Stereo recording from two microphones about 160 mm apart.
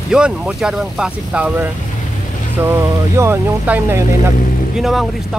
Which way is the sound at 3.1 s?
10° right (ahead or behind).